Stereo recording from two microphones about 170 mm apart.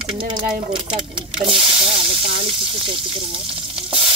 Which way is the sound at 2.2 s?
30° right (ahead or behind).